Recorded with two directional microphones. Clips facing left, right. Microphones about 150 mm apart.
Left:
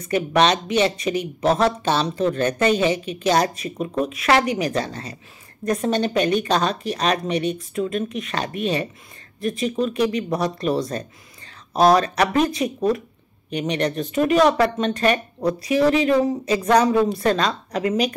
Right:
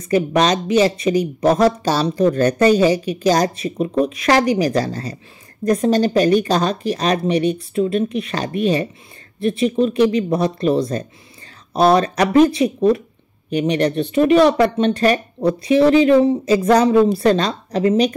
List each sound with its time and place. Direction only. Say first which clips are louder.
0.0 s a woman's voice: right 2 dB; 35° right (ahead or behind)
13.5 s a woman's voice: right 6 dB; 35° left (ahead or behind)
13.7 s a woman's voice: right 4 dB; 35° right (ahead or behind)